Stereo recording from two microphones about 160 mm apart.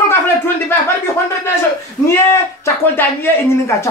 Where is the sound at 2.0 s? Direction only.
15° left (ahead or behind).